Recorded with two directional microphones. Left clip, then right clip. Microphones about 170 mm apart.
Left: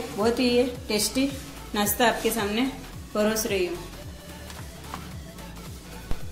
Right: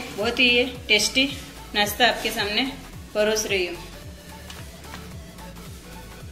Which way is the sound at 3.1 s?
60° left (ahead or behind).